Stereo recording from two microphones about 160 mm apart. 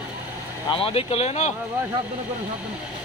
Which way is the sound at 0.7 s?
35° left (ahead or behind).